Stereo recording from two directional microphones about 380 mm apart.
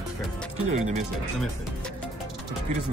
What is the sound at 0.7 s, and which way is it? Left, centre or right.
Speech, centre.